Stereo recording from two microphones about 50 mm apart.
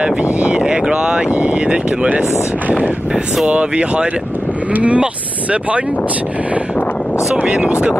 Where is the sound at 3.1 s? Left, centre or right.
Centre.